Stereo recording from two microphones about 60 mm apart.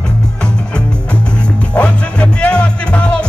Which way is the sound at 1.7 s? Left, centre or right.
Left.